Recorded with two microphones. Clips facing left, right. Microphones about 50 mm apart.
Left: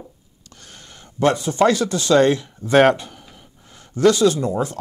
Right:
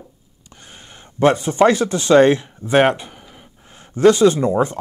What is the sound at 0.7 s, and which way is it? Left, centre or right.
Speech, right.